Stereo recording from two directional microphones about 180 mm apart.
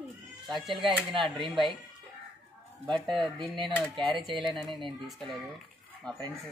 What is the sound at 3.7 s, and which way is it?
Speech, 10° left (ahead or behind).